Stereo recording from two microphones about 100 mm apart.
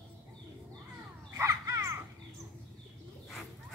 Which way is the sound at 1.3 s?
30° right (ahead or behind).